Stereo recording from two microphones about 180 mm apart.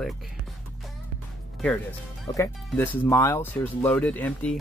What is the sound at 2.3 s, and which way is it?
Speech, 15° left (ahead or behind).